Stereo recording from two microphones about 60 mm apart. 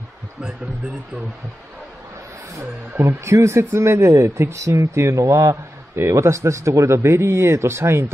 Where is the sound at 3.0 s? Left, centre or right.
Right.